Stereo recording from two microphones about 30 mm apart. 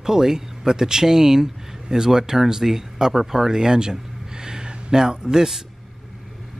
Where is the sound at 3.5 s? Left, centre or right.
Right.